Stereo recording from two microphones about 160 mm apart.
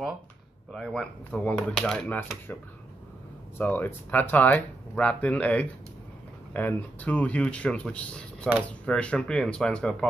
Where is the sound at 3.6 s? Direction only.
10° left (ahead or behind).